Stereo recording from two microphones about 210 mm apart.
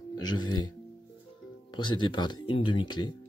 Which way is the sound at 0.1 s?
20° left (ahead or behind).